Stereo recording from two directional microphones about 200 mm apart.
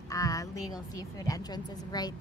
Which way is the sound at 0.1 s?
15° left (ahead or behind).